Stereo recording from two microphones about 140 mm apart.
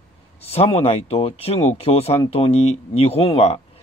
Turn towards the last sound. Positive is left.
turn(degrees=45)  # may be behind; listen again after turning